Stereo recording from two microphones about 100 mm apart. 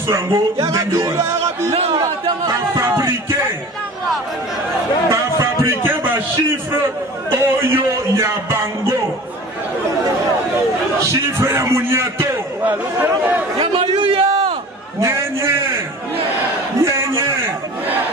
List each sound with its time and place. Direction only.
0.0 s a man's voice: 30° right (ahead or behind)
1.7 s speech: 90° right
2.4 s a man's voice: 30° right (ahead or behind)
5.1 s a sound: 30° right (ahead or behind)
7.2 s a man's voice: 25° right (ahead or behind)
11.2 s a man's voice: 30° right (ahead or behind)
13.6 s a man's voice: 70° right (ahead or behind)
13.9 s a sound: 65° right (ahead or behind)
15.0 s a man's voice: 30° right (ahead or behind)
16.8 s a sound: 25° right (ahead or behind)